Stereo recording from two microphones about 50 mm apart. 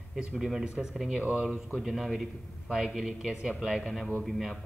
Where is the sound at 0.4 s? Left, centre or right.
Centre.